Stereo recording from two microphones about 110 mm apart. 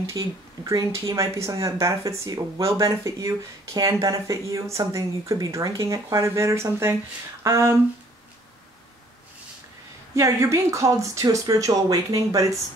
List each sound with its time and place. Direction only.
0.7 s speech: 30° right (ahead or behind)
10.1 s speech: 25° right (ahead or behind)